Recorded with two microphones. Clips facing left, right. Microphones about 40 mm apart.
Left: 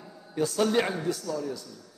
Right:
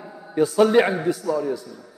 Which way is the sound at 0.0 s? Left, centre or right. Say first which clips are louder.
Right 8 dB; right.